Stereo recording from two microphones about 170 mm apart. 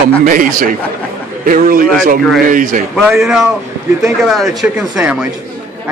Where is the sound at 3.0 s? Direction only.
5° right (ahead or behind).